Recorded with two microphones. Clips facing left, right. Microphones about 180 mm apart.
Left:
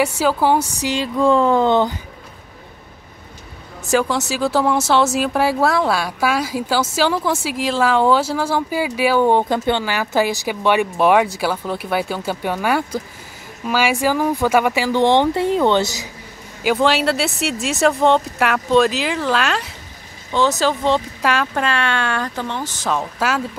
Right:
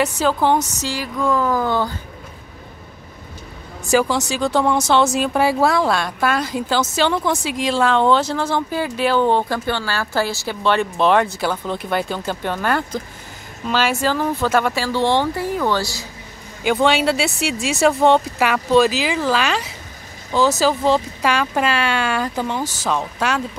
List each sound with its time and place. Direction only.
0.0 s speech: 10° left (ahead or behind)
0.9 s speech: 30° left (ahead or behind)
3.9 s speech: centre (ahead or behind); by 16.1 s 20° left (ahead or behind)
16.6 s speech: centre (ahead or behind)
22.8 s speech: centre (ahead or behind)